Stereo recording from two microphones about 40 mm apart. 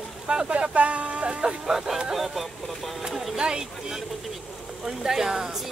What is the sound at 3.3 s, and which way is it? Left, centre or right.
Speech, right.